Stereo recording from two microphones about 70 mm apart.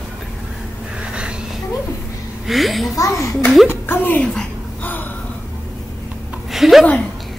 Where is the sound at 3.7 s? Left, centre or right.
Left.